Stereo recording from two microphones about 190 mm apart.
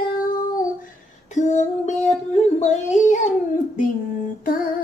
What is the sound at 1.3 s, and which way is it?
Child singing, 40° left (ahead or behind).